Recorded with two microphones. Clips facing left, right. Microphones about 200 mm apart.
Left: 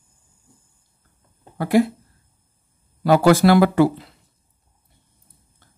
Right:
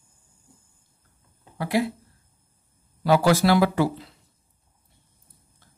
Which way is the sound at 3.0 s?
50° left (ahead or behind).